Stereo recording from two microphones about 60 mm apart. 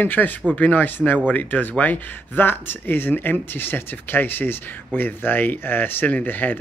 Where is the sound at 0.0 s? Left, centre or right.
Left.